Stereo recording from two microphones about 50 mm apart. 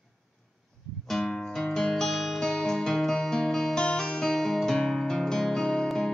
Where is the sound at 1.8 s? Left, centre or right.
Centre.